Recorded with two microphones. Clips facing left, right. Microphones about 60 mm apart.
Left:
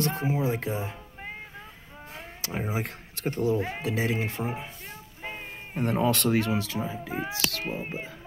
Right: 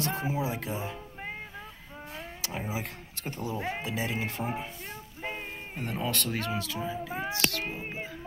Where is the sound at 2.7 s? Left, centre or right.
Left.